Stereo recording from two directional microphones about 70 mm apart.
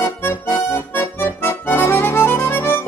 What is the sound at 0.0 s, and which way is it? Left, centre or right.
Accordion, left.